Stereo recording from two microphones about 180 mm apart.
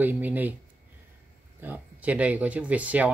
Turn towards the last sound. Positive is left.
turn(degrees=-10)  # may be behind; listen again after turning